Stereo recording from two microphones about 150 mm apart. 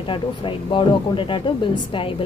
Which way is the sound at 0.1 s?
35° left (ahead or behind).